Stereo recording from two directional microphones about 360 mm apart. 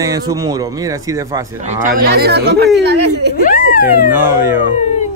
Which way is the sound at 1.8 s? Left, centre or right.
Right.